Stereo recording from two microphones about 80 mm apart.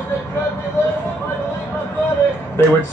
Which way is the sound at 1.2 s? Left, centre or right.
Left.